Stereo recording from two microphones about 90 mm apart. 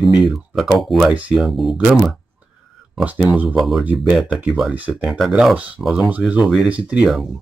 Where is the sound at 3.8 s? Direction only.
15° right (ahead or behind).